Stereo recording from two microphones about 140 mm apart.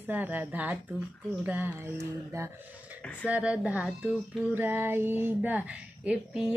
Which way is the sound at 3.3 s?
10° right (ahead or behind).